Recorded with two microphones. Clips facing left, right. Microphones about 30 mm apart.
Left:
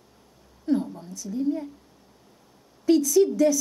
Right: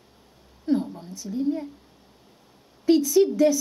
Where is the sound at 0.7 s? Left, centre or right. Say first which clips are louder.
Right 1 dB; right.